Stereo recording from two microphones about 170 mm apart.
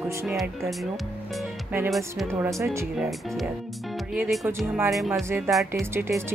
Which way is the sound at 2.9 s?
Centre (ahead or behind).